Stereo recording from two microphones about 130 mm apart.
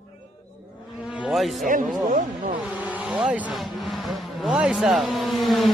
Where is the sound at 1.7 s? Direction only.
90° right.